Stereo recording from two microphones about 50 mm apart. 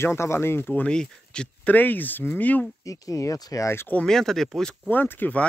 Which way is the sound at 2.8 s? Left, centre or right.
Left.